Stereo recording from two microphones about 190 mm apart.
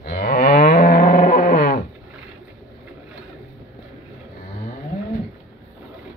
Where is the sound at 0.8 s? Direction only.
45° left (ahead or behind).